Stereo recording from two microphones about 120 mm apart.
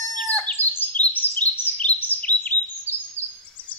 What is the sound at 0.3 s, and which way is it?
Bird, 10° left (ahead or behind).